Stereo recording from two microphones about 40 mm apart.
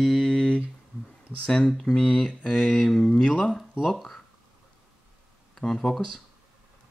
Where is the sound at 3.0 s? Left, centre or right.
Left.